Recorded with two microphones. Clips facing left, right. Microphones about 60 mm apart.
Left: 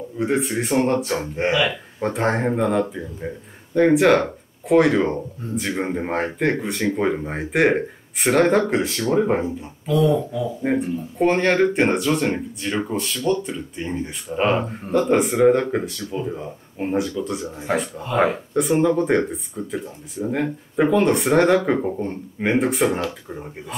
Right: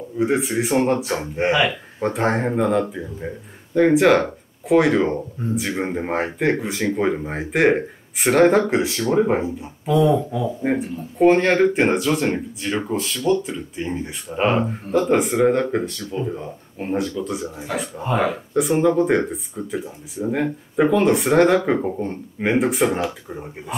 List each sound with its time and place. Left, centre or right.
0.2 s speech: centre
9.8 s speech: right
10.6 s speech: centre